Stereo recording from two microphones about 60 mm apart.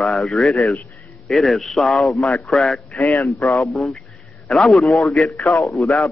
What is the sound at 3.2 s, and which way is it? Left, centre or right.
Speech, left.